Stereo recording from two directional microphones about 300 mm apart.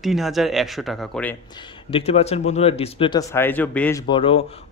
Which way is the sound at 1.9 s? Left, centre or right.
Centre.